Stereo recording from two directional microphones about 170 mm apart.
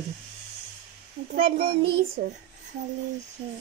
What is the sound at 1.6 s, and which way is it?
Child singing, 65° right (ahead or behind).